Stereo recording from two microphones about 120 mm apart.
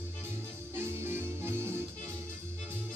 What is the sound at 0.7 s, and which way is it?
Music, 20° right (ahead or behind).